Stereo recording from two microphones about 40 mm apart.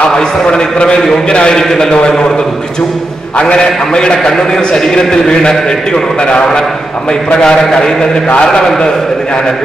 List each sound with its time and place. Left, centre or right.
0.1 s a man's voice: left
3.5 s a man's voice: left
7.4 s a man's voice: centre